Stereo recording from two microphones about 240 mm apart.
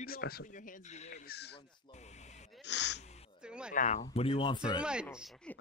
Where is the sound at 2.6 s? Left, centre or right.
Left.